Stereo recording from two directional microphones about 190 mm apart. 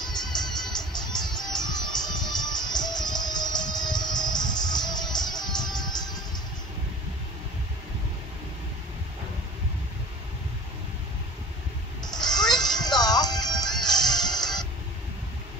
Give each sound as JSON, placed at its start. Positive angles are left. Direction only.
{"t": 0.0, "sound": "music", "side_deg": 20}
{"t": 12.0, "sound": "music", "side_deg": 20}